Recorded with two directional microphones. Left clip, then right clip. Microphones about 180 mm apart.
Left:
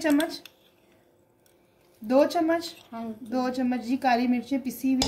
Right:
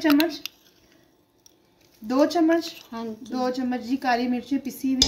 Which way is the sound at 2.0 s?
40° left (ahead or behind).